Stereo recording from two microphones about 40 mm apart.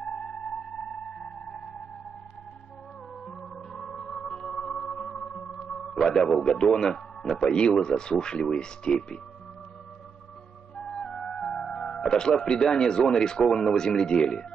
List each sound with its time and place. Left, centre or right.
0.0 s music: left
3.3 s music: centre
7.5 s speech: left
10.8 s music: centre
12.1 s speech: centre